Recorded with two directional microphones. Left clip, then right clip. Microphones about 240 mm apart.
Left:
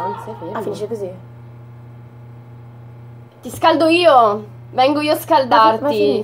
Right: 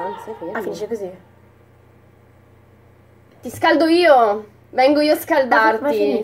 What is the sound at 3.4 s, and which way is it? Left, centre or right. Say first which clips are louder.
Speech: left 2 dB; centre.